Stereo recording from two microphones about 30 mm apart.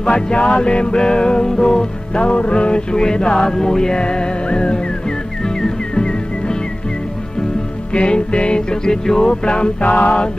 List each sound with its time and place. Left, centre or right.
0.0 s music: left
2.1 s music: left
4.0 s music: left
5.9 s music: left
7.9 s music: left